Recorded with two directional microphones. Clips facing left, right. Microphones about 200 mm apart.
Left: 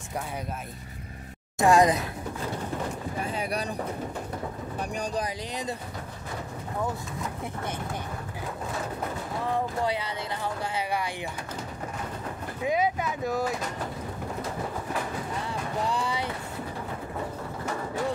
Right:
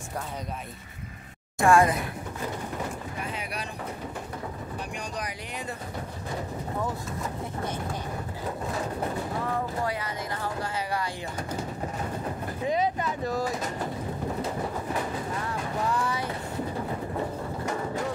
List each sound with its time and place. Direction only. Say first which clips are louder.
1.6 s speech: left 1 dB; 20° left (ahead or behind)
3.2 s speech: left 8 dB; 35° left (ahead or behind)
4.9 s speech: left 7 dB; 30° left (ahead or behind)
12.6 s speech: left 1 dB; 5° left (ahead or behind)